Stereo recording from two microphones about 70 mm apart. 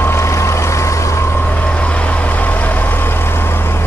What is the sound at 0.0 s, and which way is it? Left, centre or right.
Boat, left.